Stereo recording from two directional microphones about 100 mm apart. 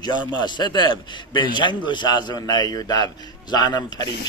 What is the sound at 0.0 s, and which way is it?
A man's voice, 45° left (ahead or behind).